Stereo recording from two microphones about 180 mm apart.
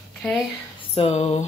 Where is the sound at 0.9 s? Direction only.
35° left (ahead or behind).